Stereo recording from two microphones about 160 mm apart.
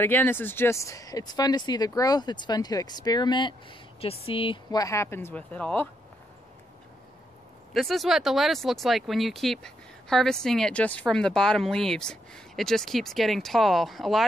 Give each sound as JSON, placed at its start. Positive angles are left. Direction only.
{"t": 0.0, "sound": "speech", "side_deg": 15}
{"t": 7.7, "sound": "speech", "side_deg": 0}